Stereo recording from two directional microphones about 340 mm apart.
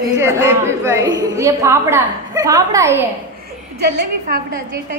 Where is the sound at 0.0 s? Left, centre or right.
Centre.